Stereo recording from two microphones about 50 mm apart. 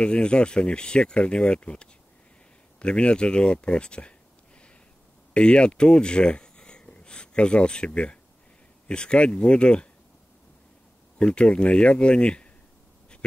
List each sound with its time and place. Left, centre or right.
0.0 s speech: left
5.3 s speech: centre
11.1 s speech: centre